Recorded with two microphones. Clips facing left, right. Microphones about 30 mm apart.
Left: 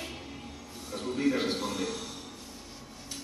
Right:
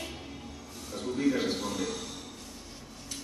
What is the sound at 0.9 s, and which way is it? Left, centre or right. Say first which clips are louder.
A man's voice: even; left.